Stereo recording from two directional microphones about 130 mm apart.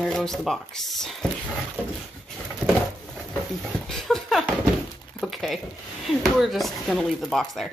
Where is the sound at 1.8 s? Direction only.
10° right (ahead or behind).